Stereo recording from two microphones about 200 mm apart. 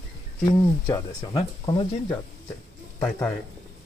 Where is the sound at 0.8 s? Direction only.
15° left (ahead or behind).